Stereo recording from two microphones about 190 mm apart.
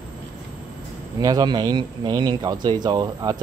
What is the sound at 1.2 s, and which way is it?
A man's voice, 20° right (ahead or behind).